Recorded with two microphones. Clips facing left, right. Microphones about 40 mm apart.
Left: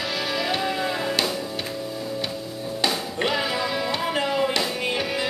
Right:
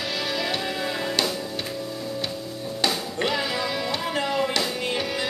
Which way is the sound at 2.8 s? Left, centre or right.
Centre.